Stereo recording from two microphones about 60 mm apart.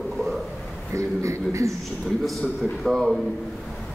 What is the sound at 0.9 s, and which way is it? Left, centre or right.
Speech, right.